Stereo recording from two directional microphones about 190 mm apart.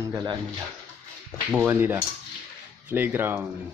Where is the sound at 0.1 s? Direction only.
20° right (ahead or behind).